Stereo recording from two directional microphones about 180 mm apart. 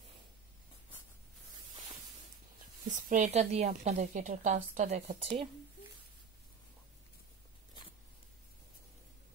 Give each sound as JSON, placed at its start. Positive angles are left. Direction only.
{"t": 3.1, "sound": "a woman's voice", "side_deg": -40}